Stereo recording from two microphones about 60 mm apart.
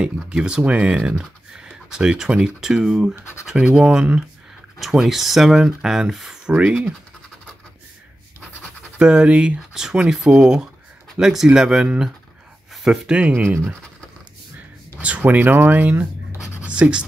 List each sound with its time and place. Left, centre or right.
0.0 s speech: centre
4.7 s speech: centre
6.5 s speech: right
8.9 s speech: centre
15.0 s speech: right